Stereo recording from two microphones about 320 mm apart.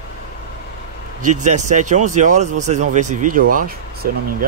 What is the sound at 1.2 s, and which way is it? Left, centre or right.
Speech, right.